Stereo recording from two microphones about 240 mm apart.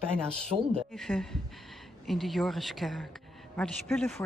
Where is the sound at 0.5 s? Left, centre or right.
Right.